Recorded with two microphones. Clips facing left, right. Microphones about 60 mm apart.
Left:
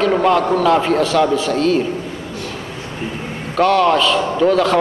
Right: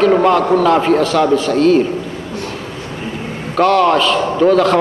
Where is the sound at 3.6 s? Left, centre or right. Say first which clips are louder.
Right 2 dB; centre.